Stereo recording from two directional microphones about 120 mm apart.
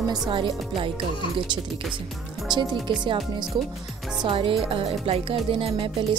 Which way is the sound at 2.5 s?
40° right (ahead or behind).